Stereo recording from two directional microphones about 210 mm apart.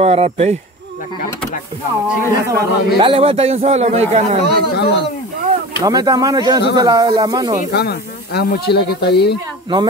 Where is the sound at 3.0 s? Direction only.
25° right (ahead or behind).